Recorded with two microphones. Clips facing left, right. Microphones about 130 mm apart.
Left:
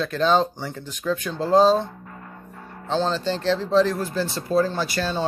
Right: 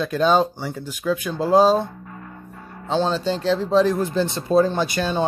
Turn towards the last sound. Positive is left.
turn(degrees=-15)  # may be behind; listen again after turning